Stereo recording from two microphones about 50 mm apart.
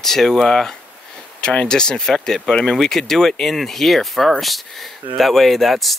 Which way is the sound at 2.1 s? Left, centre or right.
Centre.